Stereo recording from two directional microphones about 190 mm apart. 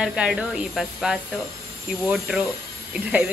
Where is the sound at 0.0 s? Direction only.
Centre (ahead or behind).